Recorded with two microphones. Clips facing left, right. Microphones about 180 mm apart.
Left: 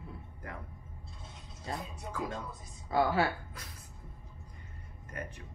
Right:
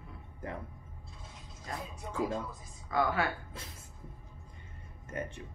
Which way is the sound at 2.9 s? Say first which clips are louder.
Left 2 dB; 30° left (ahead or behind).